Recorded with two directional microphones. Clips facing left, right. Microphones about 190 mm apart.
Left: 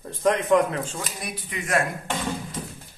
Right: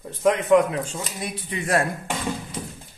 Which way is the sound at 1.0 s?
25° right (ahead or behind).